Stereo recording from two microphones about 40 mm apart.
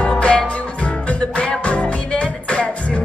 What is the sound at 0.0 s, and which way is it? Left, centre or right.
Music, left.